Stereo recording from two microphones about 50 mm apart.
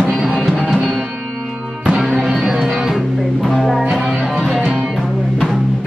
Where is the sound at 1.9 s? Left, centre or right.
Centre.